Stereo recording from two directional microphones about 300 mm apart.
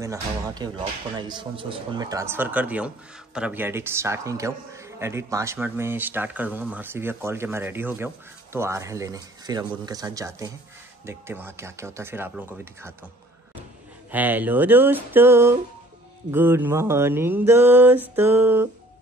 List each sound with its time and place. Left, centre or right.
0.0 s a man's voice: centre
14.1 s a man's voice: centre